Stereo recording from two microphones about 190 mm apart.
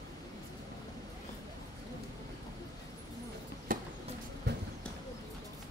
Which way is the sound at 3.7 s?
45° right (ahead or behind).